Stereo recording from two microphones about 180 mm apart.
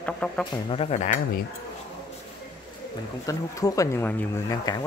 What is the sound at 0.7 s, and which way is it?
Speech, 35° left (ahead or behind).